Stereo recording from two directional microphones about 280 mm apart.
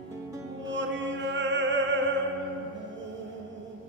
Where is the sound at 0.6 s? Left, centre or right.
Right.